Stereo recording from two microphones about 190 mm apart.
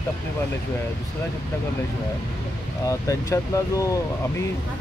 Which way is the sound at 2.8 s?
15° left (ahead or behind).